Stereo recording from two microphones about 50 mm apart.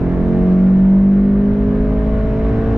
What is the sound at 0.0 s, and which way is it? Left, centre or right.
Vehicle, centre.